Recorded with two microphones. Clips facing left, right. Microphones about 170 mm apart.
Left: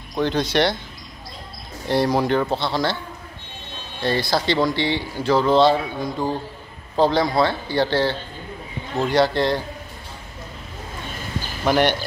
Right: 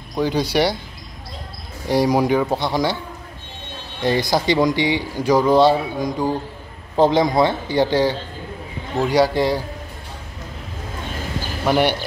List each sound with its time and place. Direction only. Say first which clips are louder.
0.1 s speech: right 1 dB; 10° right (ahead or behind)
1.9 s speech: right 2 dB; 10° right (ahead or behind)
4.0 s speech: right 3 dB; 15° right (ahead or behind)
11.6 s speech: right 1 dB; 5° right (ahead or behind)